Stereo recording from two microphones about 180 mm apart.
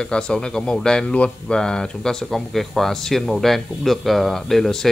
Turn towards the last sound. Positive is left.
turn(degrees=0)  # may be behind; listen again after turning